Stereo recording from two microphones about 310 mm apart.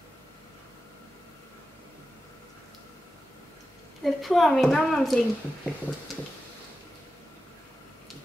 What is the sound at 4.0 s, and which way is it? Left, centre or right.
A woman's voice, centre.